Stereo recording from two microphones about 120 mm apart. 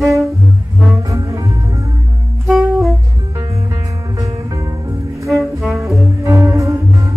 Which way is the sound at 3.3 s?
25° right (ahead or behind).